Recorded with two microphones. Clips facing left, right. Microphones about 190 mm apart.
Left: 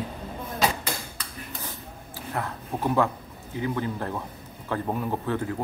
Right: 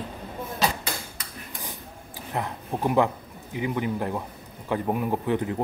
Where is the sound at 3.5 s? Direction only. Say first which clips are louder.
Right 1 dB; 15° right (ahead or behind).